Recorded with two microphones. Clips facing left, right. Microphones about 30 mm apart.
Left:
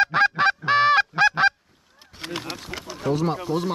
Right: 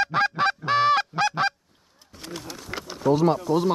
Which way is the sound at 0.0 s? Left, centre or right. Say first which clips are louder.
Left 3 dB; centre.